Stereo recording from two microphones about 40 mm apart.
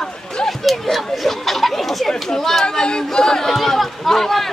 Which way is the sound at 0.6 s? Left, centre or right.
Centre.